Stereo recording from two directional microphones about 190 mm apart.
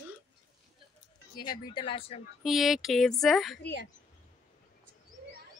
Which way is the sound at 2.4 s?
Centre (ahead or behind).